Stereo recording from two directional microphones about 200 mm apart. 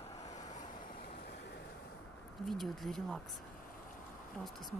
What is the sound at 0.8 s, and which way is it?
Vehicle, 50° left (ahead or behind).